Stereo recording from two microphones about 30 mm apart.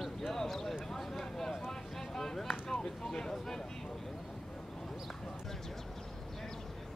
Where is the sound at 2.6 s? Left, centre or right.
Left.